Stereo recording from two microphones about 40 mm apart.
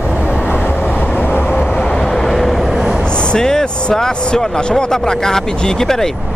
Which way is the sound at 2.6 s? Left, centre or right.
Centre.